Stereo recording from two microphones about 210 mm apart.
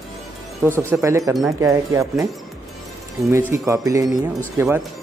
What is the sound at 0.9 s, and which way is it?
Speech, 15° right (ahead or behind).